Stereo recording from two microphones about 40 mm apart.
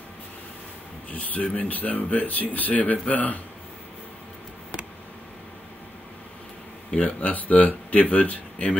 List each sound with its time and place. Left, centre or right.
1.1 s speech: left
6.9 s speech: left